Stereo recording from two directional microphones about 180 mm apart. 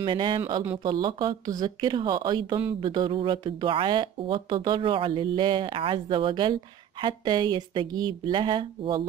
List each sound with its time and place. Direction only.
0.0 s a woman's voice: 25° right (ahead or behind)